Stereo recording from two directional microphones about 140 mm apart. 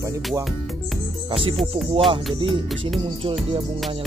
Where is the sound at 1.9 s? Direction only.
40° right (ahead or behind).